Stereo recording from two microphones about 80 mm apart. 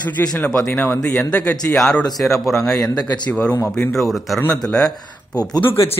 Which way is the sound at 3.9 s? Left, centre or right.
Centre.